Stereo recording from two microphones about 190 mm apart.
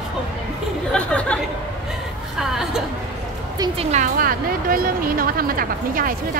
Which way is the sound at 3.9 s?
50° right (ahead or behind).